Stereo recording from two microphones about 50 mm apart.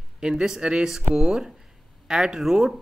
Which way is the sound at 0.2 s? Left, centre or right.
Centre.